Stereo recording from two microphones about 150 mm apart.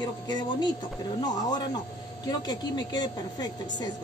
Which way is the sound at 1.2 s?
25° left (ahead or behind).